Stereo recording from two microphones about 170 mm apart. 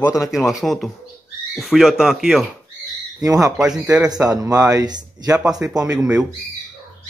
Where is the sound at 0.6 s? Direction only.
Centre (ahead or behind).